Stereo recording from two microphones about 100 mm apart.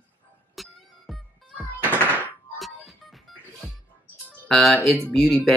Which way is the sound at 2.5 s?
Centre (ahead or behind).